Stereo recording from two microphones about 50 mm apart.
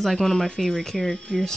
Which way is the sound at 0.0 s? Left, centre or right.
Centre.